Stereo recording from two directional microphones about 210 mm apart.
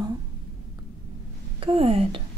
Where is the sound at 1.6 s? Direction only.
25° right (ahead or behind).